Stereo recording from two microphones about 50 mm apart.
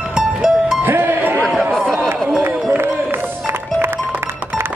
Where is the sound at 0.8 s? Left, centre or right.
Right.